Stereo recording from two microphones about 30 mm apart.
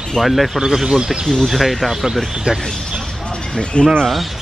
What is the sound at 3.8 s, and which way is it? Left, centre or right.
Speech, left.